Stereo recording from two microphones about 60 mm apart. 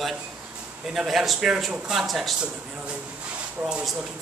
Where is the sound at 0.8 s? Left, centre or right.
Centre.